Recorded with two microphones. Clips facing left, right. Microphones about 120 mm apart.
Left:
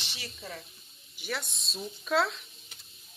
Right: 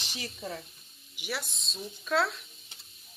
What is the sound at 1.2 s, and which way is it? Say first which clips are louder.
Speech: even; 5° right (ahead or behind).